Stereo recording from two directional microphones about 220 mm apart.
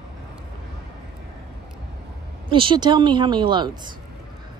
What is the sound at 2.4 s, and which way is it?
A woman's voice, 25° right (ahead or behind).